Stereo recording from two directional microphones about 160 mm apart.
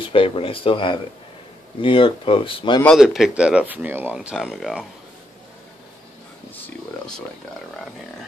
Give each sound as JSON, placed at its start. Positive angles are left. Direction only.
{"t": 0.0, "sound": "speech", "side_deg": 35}
{"t": 3.0, "sound": "speech", "side_deg": -5}